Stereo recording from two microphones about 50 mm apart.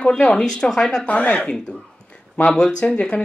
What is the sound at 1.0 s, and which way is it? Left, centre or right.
Speech, left.